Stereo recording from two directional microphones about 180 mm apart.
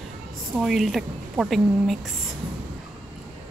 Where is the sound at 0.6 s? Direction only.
Centre (ahead or behind).